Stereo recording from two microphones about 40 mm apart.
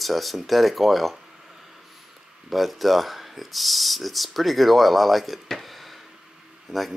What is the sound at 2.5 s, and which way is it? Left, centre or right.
Speech, centre.